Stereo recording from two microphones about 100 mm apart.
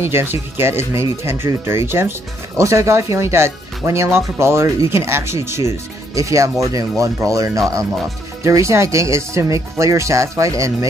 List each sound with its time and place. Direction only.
0.0 s speech: 25° right (ahead or behind)